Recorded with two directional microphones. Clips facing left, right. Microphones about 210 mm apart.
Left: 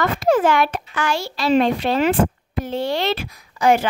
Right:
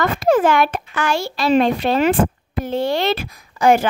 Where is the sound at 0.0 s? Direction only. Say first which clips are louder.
Right 2 dB; 50° right (ahead or behind).